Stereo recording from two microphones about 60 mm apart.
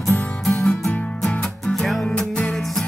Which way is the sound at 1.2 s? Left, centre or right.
Centre.